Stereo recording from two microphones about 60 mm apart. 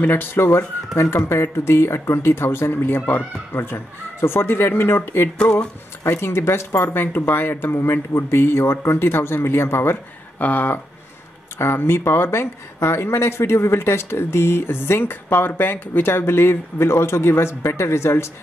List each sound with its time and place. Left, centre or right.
0.0 s speech: left
10.4 s speech: left